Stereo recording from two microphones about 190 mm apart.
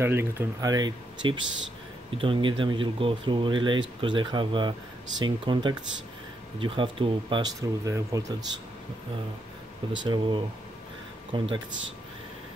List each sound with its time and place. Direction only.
0.0 s speech: 10° right (ahead or behind)
10.0 s speech: 25° right (ahead or behind)